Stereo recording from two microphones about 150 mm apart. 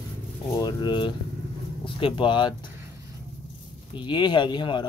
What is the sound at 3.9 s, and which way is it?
Speech, 30° left (ahead or behind).